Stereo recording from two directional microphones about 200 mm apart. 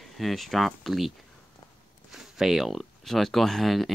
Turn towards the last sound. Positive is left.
turn(degrees=0)  # may be behind; listen again after turning